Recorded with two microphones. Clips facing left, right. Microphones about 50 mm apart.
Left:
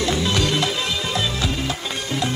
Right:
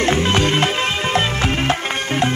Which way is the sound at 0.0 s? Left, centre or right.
Right.